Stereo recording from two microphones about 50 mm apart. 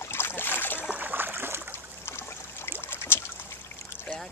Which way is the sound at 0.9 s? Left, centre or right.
Right.